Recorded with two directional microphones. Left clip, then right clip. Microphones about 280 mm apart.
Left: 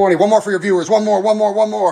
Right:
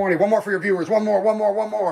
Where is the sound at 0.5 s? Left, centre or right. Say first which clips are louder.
Left 4 dB; left.